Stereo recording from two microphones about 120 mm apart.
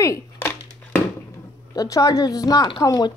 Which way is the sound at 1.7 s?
30° left (ahead or behind).